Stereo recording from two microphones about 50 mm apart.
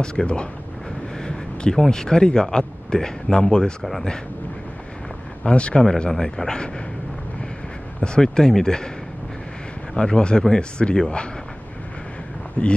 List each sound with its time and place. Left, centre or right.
0.0 s speech: centre
1.1 s a sound: centre
1.8 s speech: centre
5.4 s speech: left
8.0 s speech: centre
9.9 s speech: centre
12.6 s speech: left